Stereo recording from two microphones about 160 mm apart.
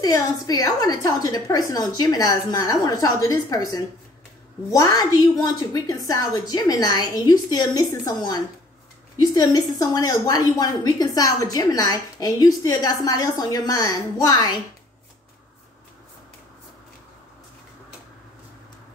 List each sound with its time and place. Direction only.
0.0 s a woman's voice: 20° left (ahead or behind)